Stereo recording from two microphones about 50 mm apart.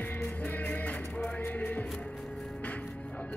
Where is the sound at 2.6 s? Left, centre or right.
Left.